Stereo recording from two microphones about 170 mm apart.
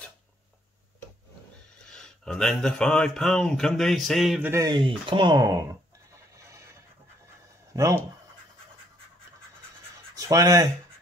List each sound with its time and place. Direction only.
1.9 s speech: 5° left (ahead or behind)
4.5 s speech: 15° right (ahead or behind)
4.7 s speech: 30° right (ahead or behind)
6.3 s pant: 15° right (ahead or behind)
7.7 s speech: 20° right (ahead or behind)
10.1 s speech: 20° right (ahead or behind)